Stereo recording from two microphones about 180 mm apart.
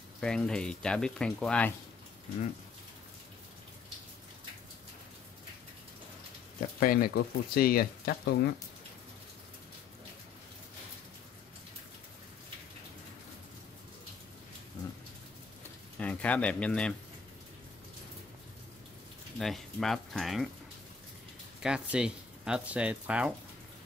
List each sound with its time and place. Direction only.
0.2 s speech: 5° left (ahead or behind)
6.8 s speech: 55° left (ahead or behind)
16.0 s speech: 10° left (ahead or behind)
19.3 s speech: centre (ahead or behind)
21.6 s speech: 5° right (ahead or behind)